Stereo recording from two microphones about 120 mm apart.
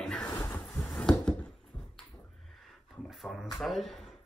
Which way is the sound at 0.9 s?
10° left (ahead or behind).